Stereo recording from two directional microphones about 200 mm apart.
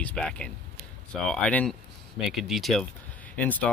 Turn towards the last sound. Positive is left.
turn(degrees=10)  # may be behind; listen again after turning